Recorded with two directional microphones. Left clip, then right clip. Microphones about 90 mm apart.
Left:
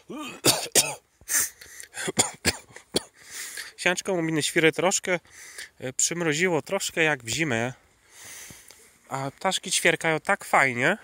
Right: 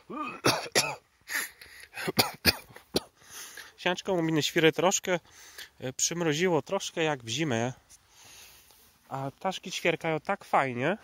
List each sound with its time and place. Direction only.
0.1 s cough: 55° left (ahead or behind); by 1.0 s 75° left (ahead or behind)
1.6 s a sound: 25° left (ahead or behind)
2.1 s cough: 10° right (ahead or behind)
3.3 s a sound: centre (ahead or behind)
3.5 s speech: 15° left (ahead or behind)
6.6 s speech: 30° left (ahead or behind); by 7.7 s 10° left (ahead or behind)
8.2 s sniff: 45° left (ahead or behind)
9.1 s speech: 20° left (ahead or behind)